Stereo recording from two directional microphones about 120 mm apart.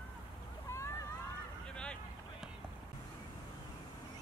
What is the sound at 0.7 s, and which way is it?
Vehicle, 25° left (ahead or behind).